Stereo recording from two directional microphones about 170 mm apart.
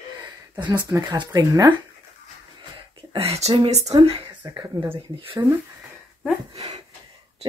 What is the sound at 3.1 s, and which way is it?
Speech, 35° right (ahead or behind).